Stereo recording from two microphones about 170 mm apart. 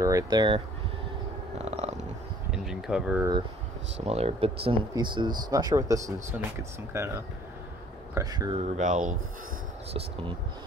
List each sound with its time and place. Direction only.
0.0 s speech: 20° right (ahead or behind)
1.6 s dog: 40° right (ahead or behind)
2.5 s speech: 5° right (ahead or behind)
4.0 s speech: 35° right (ahead or behind)
8.7 s speech: 45° right (ahead or behind)